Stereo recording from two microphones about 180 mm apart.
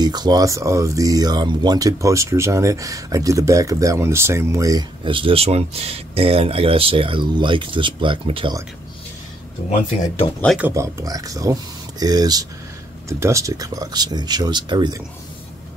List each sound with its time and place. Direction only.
0.0 s speech: 25° right (ahead or behind)
10.6 s speech: 15° right (ahead or behind)